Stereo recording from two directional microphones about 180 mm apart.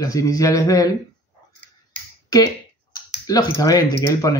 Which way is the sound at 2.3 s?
20° left (ahead or behind).